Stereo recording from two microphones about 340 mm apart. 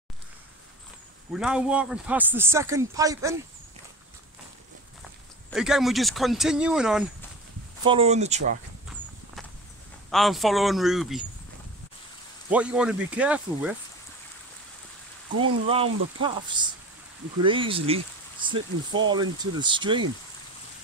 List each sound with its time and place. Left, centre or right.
1.3 s speech: centre
5.5 s speech: centre
7.8 s speech: centre
10.1 s speech: centre
12.4 s speech: centre
15.7 s speech: centre
17.4 s speech: centre